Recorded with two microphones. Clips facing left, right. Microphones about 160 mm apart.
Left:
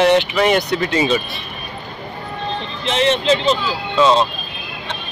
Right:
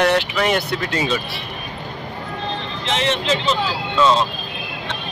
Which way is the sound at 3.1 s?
20° left (ahead or behind).